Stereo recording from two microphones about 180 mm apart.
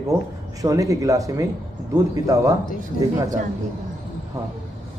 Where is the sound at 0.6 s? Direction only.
20° right (ahead or behind).